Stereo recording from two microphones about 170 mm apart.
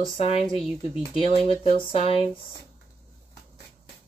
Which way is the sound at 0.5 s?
Centre (ahead or behind).